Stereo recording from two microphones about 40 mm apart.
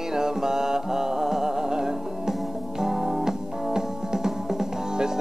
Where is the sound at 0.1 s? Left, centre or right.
Centre.